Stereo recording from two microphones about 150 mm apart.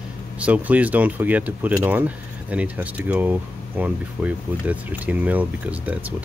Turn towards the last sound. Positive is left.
turn(degrees=-10)  # may be behind; listen again after turning